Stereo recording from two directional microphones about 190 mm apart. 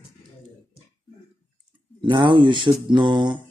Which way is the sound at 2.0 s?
25° right (ahead or behind).